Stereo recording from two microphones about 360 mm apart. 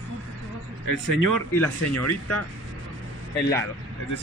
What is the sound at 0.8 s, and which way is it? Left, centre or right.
Speech, left.